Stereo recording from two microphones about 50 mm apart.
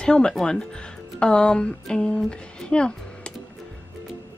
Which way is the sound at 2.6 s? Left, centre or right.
Centre.